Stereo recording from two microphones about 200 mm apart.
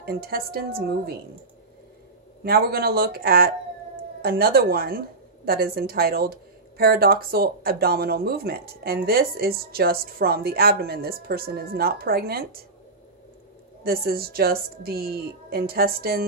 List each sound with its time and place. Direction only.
0.0 s a woman's voice: 50° right (ahead or behind)
2.4 s a woman's voice: 50° right (ahead or behind)
13.8 s a woman's voice: 50° right (ahead or behind)